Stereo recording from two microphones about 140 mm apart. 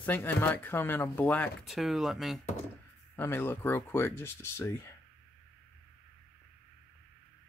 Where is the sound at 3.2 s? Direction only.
15° left (ahead or behind).